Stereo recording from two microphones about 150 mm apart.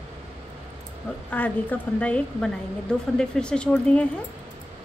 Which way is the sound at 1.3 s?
10° left (ahead or behind).